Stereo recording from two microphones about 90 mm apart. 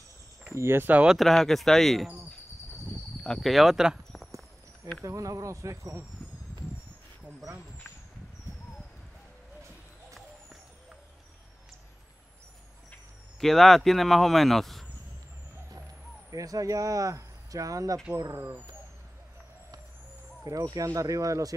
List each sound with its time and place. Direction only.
0.6 s speech: 25° right (ahead or behind)
1.0 s speech: centre (ahead or behind)
3.3 s speech: centre (ahead or behind)
5.0 s speech: 40° right (ahead or behind)
13.4 s speech: 5° left (ahead or behind)
16.3 s speech: 40° right (ahead or behind)
20.4 s speech: 45° right (ahead or behind)